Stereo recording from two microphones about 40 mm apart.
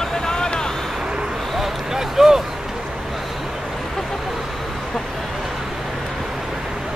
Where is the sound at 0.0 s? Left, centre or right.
Centre.